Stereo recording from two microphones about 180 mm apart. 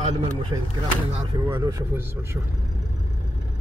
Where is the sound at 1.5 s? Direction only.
20° right (ahead or behind).